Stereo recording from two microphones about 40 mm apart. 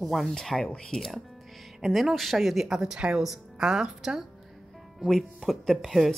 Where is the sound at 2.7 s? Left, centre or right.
Centre.